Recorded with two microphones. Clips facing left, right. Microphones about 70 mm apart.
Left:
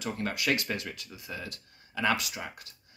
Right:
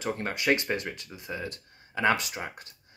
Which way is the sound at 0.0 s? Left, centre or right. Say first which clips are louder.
Right 2 dB; right.